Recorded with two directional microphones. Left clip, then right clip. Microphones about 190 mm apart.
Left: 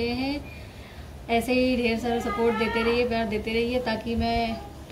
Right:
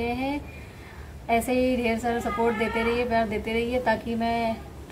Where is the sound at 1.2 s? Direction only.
Centre (ahead or behind).